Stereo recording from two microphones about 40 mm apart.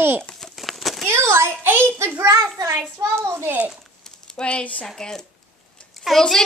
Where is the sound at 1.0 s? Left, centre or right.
Right.